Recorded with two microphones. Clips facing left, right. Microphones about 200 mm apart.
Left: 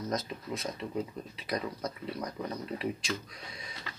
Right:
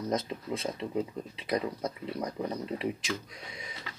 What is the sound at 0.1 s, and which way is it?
Speech, 25° right (ahead or behind).